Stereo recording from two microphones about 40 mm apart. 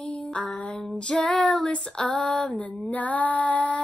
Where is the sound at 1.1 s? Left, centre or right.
Left.